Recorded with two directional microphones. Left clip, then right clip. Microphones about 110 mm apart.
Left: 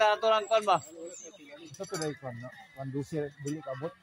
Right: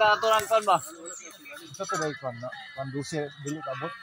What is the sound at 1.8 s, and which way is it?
Speech, 90° right.